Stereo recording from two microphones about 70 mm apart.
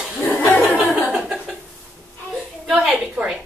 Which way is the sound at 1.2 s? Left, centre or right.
Centre.